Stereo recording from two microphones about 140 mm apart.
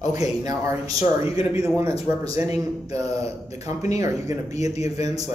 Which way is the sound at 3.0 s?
50° left (ahead or behind).